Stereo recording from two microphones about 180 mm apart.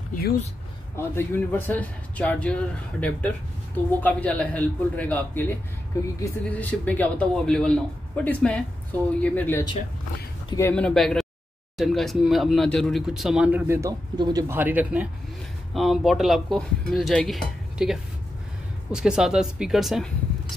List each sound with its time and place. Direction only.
0.9 s speech: 10° left (ahead or behind)
10.7 s speech: 5° left (ahead or behind); by 14.4 s 20° right (ahead or behind)
14.5 s speech: 10° right (ahead or behind)